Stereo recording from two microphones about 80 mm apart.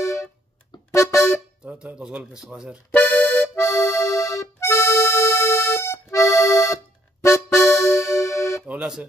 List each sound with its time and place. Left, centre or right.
0.0 s music: left
1.6 s speech: centre
2.9 s accordion: left
3.5 s accordion: left
7.2 s music: left
8.6 s music: centre